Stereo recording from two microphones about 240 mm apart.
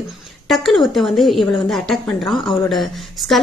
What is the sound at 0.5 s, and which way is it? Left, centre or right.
A woman's voice, centre.